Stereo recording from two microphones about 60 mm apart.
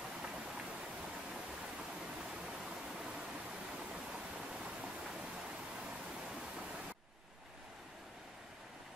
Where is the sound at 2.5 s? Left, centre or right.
Centre.